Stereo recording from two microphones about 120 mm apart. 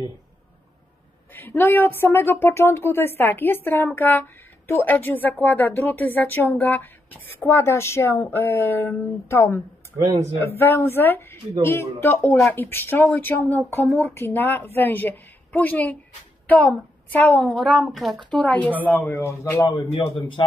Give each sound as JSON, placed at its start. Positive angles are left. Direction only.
{"t": 1.3, "sound": "speech", "side_deg": 15}
{"t": 10.6, "sound": "a woman's voice", "side_deg": 20}
{"t": 17.6, "sound": "speech", "side_deg": 0}
{"t": 18.4, "sound": "speech", "side_deg": 15}
{"t": 19.9, "sound": "a man's voice", "side_deg": 45}